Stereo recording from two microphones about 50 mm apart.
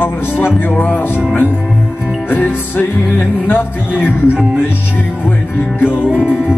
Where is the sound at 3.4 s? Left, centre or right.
Left.